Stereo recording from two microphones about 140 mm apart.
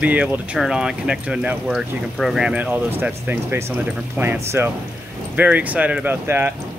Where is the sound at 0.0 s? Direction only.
10° right (ahead or behind).